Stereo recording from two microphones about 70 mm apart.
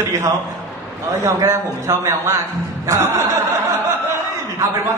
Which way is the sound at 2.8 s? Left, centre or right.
Right.